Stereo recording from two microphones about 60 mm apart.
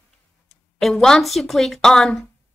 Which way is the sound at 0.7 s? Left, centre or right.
Centre.